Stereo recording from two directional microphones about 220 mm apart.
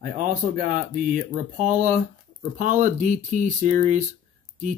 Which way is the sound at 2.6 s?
35° right (ahead or behind).